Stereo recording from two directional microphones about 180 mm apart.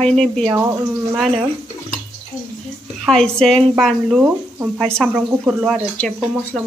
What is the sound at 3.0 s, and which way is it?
A woman's voice, 5° left (ahead or behind).